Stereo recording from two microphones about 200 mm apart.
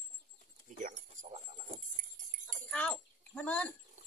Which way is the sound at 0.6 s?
40° right (ahead or behind).